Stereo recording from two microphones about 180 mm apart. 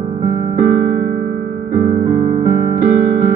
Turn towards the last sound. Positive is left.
turn(degrees=-50)  # may be behind; listen again after turning